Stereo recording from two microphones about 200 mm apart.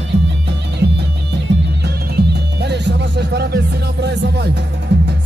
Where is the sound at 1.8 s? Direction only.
55° right (ahead or behind).